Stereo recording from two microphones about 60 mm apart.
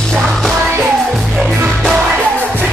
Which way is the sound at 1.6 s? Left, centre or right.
Centre.